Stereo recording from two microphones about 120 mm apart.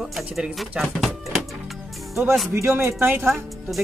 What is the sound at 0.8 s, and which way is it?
Music, centre (ahead or behind).